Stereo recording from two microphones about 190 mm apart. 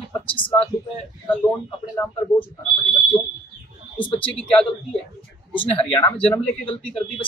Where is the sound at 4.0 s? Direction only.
30° left (ahead or behind).